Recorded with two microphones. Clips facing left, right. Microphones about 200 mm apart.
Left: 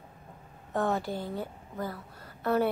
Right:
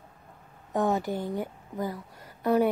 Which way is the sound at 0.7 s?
15° right (ahead or behind).